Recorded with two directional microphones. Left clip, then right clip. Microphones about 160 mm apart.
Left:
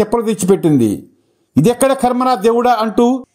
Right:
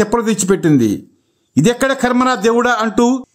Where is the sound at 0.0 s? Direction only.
5° left (ahead or behind).